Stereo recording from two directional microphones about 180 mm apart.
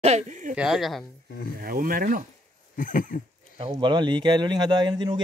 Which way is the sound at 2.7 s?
50° left (ahead or behind).